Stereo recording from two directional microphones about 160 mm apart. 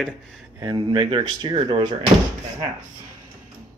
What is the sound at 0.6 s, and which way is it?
Speech, 25° right (ahead or behind).